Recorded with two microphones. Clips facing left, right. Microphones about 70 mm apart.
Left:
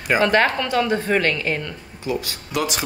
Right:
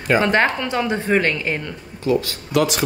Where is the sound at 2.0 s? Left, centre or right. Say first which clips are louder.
Right 6 dB; centre.